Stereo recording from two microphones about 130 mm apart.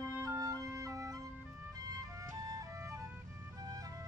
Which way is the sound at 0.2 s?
25° right (ahead or behind).